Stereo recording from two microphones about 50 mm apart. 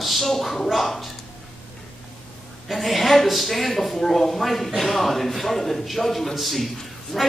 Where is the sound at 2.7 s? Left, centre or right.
Centre.